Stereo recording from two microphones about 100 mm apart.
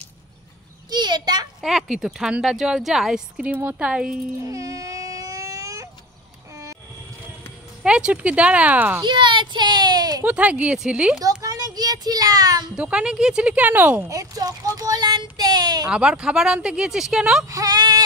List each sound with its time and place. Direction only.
0.8 s a sound: 45° right (ahead or behind)
1.6 s speech: 5° right (ahead or behind)
4.5 s baby cry: 35° right (ahead or behind)
7.8 s speech: 10° right (ahead or behind)
9.0 s a child's voice: 50° right (ahead or behind)
10.2 s speech: 15° right (ahead or behind)
11.1 s a sound: 35° right (ahead or behind)
12.7 s speech: 10° right (ahead or behind)
14.0 s a child's voice: 35° right (ahead or behind)
15.9 s speech: 10° right (ahead or behind)
17.5 s female singing: 40° right (ahead or behind)